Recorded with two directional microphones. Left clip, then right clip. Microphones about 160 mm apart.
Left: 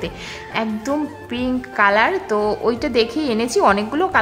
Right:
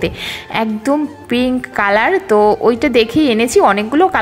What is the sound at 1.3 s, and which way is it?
Speech, 25° right (ahead or behind).